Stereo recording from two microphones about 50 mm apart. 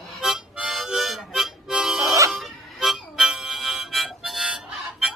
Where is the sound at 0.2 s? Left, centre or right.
Centre.